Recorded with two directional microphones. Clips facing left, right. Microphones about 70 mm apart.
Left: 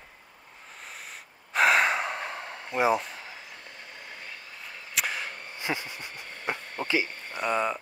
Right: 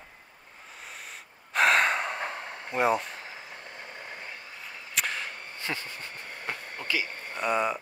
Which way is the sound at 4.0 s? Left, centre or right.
Right.